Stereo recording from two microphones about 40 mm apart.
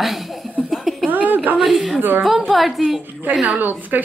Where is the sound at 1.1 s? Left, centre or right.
Right.